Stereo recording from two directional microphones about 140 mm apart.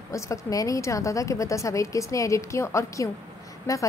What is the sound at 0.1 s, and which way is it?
A woman's voice, 20° left (ahead or behind).